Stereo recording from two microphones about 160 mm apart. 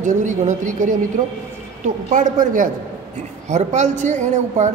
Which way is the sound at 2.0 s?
55° right (ahead or behind).